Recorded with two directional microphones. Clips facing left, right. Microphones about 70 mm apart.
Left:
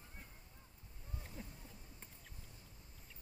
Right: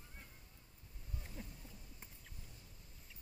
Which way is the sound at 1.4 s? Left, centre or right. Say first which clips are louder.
Even; centre.